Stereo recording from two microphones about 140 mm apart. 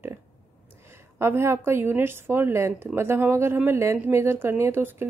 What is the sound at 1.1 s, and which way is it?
A woman's voice, 20° right (ahead or behind).